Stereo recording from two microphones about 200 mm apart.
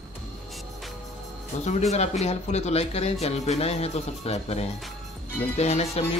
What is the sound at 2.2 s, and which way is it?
Speech, 30° left (ahead or behind).